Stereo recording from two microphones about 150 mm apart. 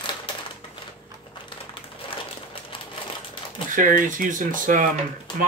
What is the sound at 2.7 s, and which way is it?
Typewriter, 35° left (ahead or behind).